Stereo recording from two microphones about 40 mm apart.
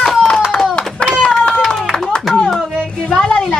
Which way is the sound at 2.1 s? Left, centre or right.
Centre.